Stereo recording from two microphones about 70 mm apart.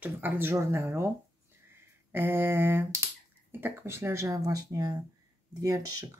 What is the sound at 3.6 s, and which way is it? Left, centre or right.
Speech, right.